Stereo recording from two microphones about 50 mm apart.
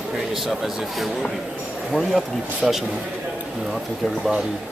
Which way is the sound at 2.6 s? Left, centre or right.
Centre.